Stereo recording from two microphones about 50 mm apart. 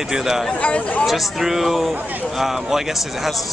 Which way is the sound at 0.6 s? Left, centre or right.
Left.